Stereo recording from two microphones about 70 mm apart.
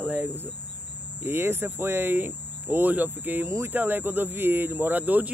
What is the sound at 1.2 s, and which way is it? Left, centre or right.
Hum, right.